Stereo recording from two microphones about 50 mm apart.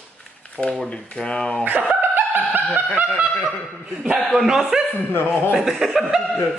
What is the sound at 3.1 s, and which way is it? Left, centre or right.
Speech, centre.